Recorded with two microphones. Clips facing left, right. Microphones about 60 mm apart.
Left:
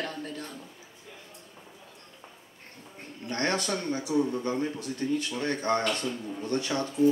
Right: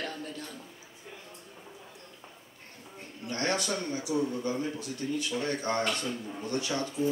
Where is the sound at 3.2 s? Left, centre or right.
Left.